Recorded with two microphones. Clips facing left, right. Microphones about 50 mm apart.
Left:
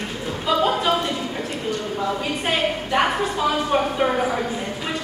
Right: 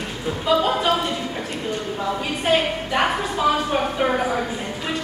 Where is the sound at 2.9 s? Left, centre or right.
Centre.